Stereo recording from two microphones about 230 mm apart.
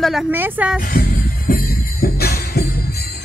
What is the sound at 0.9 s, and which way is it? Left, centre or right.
Music, left.